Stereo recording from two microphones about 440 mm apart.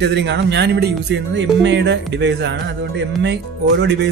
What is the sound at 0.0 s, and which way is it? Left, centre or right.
Speech, right.